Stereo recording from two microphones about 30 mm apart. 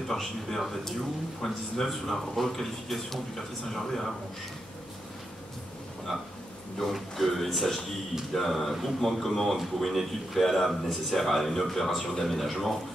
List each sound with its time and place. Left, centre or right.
0.1 s a man's voice: centre
3.7 s a man's voice: centre
6.9 s a man's voice: centre